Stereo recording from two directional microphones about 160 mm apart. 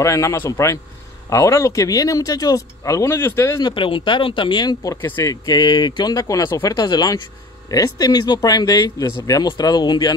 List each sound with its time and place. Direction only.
0.0 s speech: 20° left (ahead or behind)
3.6 s speech: 30° left (ahead or behind)